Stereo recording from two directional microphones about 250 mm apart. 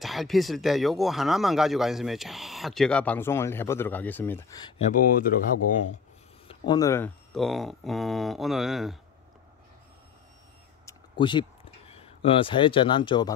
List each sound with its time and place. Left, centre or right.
0.0 s speech: centre; by 5.9 s left
6.7 s speech: centre
7.3 s speech: centre
10.9 s a sound: centre